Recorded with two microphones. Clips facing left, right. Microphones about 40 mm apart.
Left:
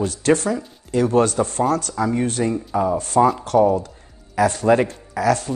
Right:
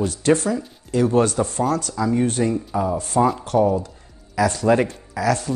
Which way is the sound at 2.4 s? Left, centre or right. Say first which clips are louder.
Even; left.